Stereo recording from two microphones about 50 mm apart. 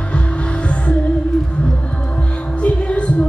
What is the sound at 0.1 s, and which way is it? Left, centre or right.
Music, left.